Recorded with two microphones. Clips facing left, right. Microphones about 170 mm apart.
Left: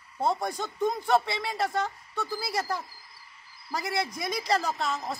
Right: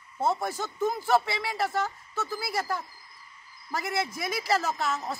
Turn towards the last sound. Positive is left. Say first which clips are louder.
# even
turn(degrees=0)  # may be behind; listen again after turning